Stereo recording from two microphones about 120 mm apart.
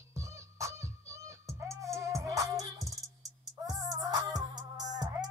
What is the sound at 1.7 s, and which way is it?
Music, 25° right (ahead or behind).